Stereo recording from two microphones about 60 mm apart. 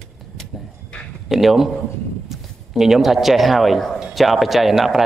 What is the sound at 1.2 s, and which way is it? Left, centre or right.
Speech, centre.